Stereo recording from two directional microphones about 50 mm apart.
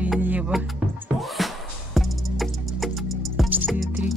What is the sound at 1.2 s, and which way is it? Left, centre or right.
Music, centre.